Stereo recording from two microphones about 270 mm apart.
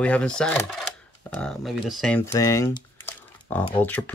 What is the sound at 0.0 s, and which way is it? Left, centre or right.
Speech, centre.